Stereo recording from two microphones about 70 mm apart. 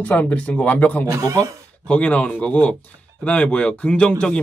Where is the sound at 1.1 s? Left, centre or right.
Right.